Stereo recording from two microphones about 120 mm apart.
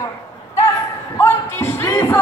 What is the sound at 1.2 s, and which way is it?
Music, 20° left (ahead or behind).